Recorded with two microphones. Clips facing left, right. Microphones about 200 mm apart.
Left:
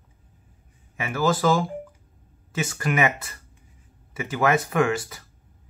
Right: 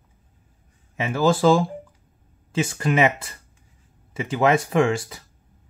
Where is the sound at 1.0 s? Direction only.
25° right (ahead or behind).